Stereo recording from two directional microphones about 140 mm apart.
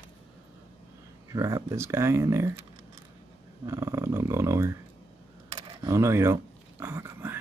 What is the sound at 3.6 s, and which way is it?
Speech, 20° right (ahead or behind).